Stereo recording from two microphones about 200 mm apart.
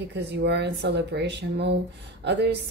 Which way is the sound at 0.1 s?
55° right (ahead or behind).